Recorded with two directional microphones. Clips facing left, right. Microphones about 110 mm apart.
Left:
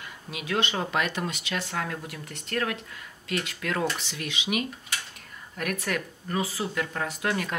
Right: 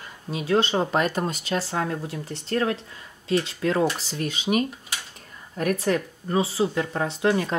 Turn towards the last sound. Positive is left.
turn(degrees=-25)  # may be behind; listen again after turning